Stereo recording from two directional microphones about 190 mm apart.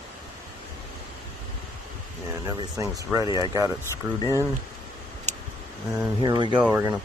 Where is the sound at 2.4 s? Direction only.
15° right (ahead or behind).